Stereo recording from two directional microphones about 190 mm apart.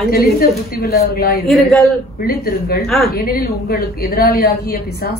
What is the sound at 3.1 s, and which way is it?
A woman's voice, 50° left (ahead or behind).